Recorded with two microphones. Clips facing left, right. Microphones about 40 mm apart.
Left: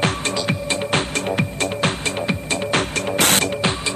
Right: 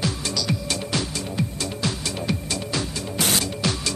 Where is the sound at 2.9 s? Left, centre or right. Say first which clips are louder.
Left 6 dB; left.